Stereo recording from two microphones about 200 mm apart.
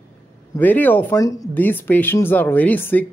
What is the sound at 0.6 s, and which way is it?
Speech, 10° left (ahead or behind).